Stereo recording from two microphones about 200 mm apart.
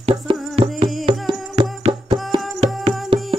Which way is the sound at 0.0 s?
25° right (ahead or behind).